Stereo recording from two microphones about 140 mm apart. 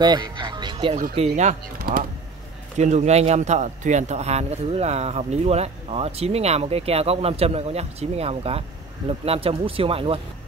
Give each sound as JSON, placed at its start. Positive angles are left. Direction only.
{"t": 0.0, "sound": "music", "side_deg": -30}
{"t": 1.3, "sound": "speech", "side_deg": -60}
{"t": 2.8, "sound": "speech", "side_deg": -55}